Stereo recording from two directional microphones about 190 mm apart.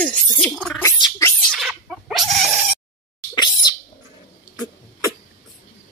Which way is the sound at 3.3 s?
20° left (ahead or behind).